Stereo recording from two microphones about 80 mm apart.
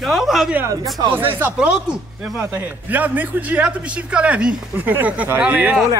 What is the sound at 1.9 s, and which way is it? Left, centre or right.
Speech, centre.